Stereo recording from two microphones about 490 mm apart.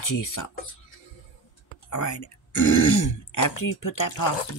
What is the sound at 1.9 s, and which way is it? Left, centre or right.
Speech, left.